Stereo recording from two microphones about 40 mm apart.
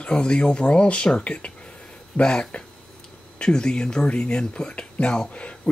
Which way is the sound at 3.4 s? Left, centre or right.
Left.